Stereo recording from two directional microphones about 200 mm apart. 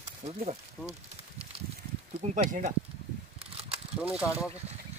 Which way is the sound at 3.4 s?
30° right (ahead or behind).